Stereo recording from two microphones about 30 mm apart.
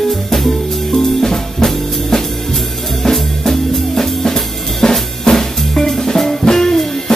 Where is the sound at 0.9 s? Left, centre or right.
Centre.